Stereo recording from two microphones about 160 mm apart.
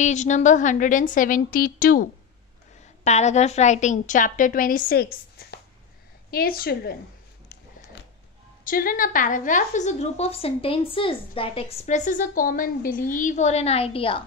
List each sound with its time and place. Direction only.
0.0 s a woman's voice: 50° left (ahead or behind); by 2.0 s 65° left (ahead or behind)
3.0 s a woman's voice: 45° left (ahead or behind); by 7.0 s 75° left (ahead or behind)
8.6 s a woman's voice: 60° left (ahead or behind); by 14.2 s 35° left (ahead or behind)